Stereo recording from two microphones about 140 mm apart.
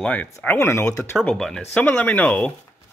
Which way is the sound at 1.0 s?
5° left (ahead or behind).